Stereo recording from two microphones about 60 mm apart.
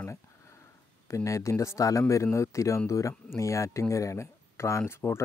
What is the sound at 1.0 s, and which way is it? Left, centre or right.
Speech, left.